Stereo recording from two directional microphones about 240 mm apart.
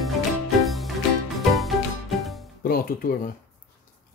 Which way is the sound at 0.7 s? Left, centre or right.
Centre.